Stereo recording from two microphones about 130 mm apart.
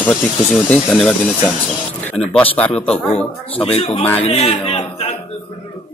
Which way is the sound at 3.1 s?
45° left (ahead or behind).